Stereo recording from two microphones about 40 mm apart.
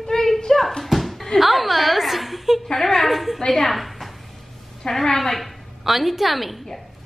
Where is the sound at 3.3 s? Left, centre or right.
Centre.